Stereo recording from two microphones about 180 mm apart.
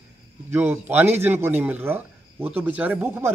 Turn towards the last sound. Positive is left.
turn(degrees=-15)  # may be behind; listen again after turning